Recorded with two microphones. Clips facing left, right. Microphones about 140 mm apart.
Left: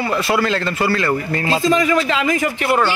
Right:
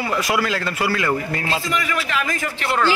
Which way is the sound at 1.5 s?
20° left (ahead or behind).